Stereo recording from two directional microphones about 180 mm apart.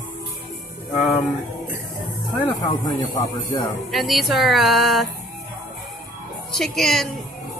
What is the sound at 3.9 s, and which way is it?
A woman's voice, centre (ahead or behind).